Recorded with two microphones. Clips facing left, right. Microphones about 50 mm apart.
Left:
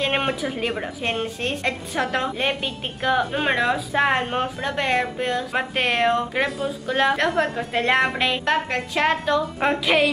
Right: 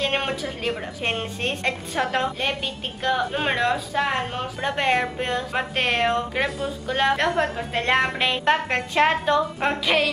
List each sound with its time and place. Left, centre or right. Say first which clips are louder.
0.0 s a woman's voice: left 2 dB; centre
1.0 s a woman's voice: even; centre
3.9 s speech: left 4 dB; left
4.6 s speech: right 4 dB; centre
8.5 s a woman's voice: right 1 dB; centre
9.6 s speech: left 2 dB; centre